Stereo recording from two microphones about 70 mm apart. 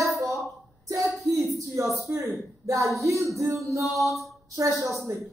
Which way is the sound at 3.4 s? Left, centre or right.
Right.